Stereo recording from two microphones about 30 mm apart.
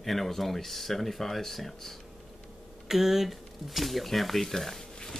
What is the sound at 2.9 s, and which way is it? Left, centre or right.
A woman's voice, centre.